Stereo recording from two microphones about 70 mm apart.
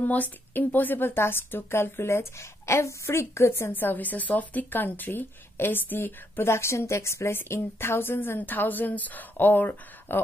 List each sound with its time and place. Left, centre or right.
0.0 s a woman's voice: left